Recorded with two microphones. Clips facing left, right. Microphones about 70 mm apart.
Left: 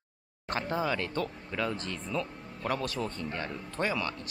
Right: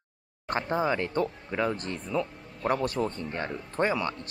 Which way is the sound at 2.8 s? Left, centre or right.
Right.